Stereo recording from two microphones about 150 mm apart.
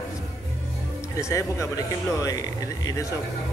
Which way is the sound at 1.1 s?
20° left (ahead or behind).